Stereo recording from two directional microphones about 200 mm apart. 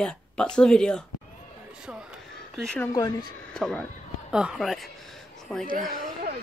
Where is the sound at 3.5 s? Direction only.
5° left (ahead or behind).